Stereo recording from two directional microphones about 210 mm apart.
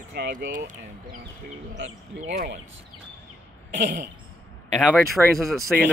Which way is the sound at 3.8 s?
55° right (ahead or behind).